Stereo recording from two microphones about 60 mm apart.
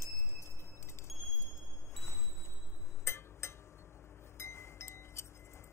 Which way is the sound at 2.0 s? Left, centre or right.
Left.